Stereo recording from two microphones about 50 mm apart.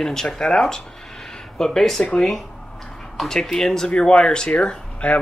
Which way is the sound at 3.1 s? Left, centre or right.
Centre.